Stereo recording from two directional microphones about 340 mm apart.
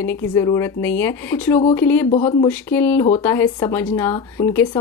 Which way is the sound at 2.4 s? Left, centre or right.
Centre.